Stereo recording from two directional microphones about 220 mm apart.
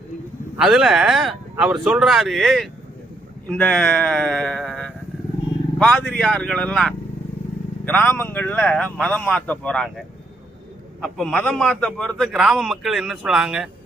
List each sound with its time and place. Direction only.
0.6 s a man's voice: 5° right (ahead or behind)